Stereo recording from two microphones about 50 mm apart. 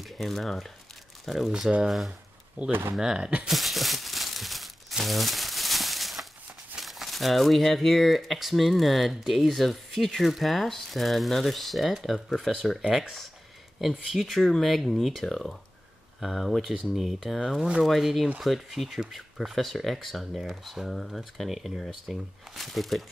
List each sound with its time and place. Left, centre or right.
0.2 s speech: centre
2.7 s speech: right
3.0 s speech: centre
3.4 s crumpling: centre
6.8 s speech: centre